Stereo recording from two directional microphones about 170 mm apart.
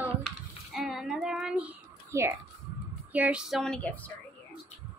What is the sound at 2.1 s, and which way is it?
Speech, 15° right (ahead or behind).